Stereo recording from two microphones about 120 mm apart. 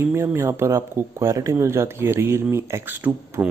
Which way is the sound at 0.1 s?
20° right (ahead or behind).